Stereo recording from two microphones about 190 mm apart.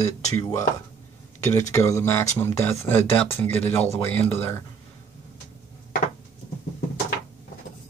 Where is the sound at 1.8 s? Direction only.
15° left (ahead or behind).